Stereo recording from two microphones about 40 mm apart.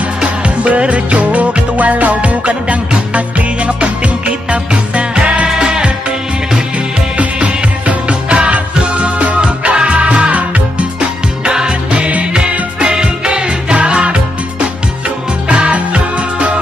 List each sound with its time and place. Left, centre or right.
0.7 s music: right
7.3 s music: right
11.4 s music: right